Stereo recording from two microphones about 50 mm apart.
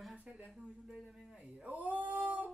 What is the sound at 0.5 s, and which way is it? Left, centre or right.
Speech, centre.